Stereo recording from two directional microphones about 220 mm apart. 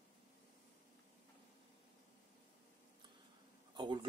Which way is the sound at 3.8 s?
20° right (ahead or behind).